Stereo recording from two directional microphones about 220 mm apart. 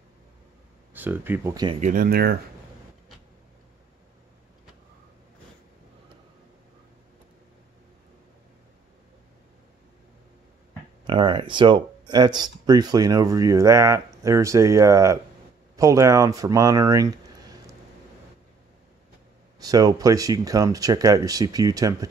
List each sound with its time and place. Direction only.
0.9 s speech: 10° right (ahead or behind)
1.8 s speech: 40° right (ahead or behind)
11.1 s speech: 20° right (ahead or behind)
19.6 s speech: 15° right (ahead or behind)